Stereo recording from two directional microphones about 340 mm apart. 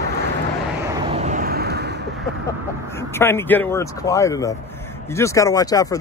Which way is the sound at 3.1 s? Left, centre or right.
Centre.